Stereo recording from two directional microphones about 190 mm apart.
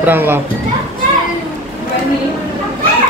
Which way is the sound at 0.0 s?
10° right (ahead or behind).